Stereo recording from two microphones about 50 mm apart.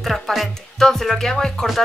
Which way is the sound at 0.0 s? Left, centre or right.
Centre.